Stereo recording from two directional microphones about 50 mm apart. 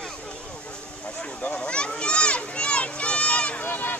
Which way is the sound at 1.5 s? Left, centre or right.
Left.